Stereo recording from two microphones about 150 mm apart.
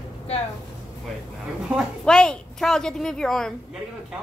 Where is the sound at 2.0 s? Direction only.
5° left (ahead or behind).